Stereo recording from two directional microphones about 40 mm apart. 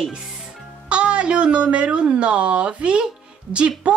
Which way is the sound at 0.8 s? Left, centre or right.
Right.